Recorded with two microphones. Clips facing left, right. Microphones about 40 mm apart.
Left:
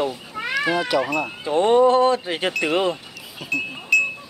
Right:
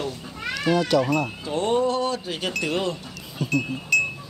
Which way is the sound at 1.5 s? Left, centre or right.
Left.